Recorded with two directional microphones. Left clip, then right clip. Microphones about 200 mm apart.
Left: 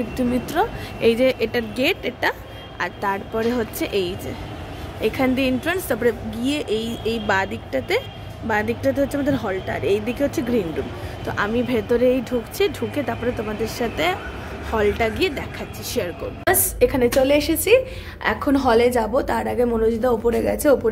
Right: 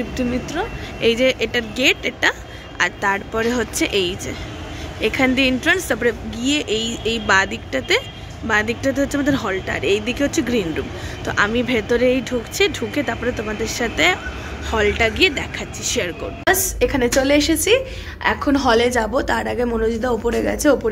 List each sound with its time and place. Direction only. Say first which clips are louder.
0.3 s a woman's voice: left 2 dB; 25° left (ahead or behind)
1.0 s speech: right 1 dB; 10° left (ahead or behind)